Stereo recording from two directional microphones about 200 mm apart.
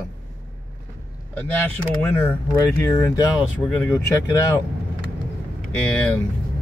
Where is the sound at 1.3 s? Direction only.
10° left (ahead or behind).